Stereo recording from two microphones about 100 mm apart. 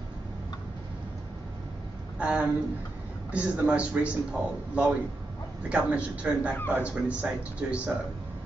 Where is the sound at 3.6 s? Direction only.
15° right (ahead or behind).